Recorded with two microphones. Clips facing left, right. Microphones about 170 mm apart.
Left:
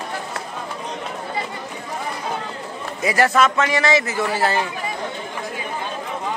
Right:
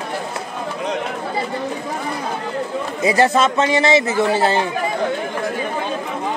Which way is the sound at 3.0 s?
25° right (ahead or behind).